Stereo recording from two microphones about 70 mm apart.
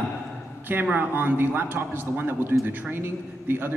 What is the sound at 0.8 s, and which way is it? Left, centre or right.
A man's voice, right.